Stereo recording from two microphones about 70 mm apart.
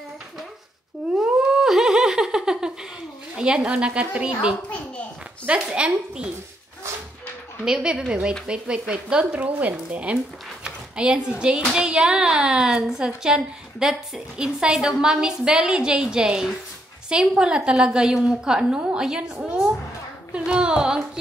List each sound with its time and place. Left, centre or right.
1.2 s laughter: centre
3.3 s a woman's voice: centre
4.6 s a sound: centre
5.5 s a woman's voice: centre
7.6 s a woman's voice: centre
20.3 s a sound: centre